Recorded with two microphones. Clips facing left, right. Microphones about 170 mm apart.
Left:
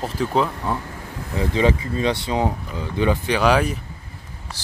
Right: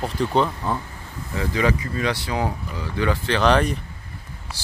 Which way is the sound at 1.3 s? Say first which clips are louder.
Left 3 dB; 20° left (ahead or behind).